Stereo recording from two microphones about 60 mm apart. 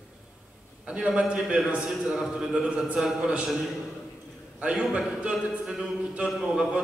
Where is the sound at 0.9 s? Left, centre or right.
Centre.